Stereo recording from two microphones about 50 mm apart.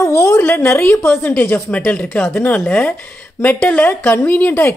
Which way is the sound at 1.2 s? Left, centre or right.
Left.